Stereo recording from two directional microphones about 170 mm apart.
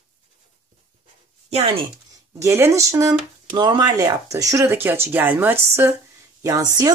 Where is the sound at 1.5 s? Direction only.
35° right (ahead or behind).